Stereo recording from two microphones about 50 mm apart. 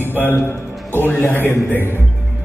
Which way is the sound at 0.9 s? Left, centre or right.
Left.